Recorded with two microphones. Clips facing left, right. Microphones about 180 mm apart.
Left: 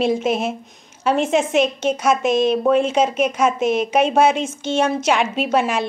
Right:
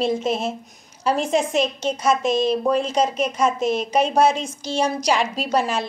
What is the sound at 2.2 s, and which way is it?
Speech, 30° right (ahead or behind).